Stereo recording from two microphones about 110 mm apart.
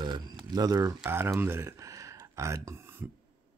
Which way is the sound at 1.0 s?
20° right (ahead or behind).